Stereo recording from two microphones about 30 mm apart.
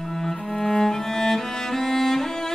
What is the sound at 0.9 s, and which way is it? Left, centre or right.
Music, centre.